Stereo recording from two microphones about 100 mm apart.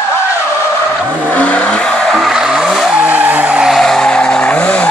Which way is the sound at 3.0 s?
15° right (ahead or behind).